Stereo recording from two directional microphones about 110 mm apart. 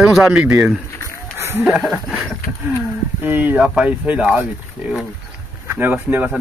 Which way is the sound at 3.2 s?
15° right (ahead or behind).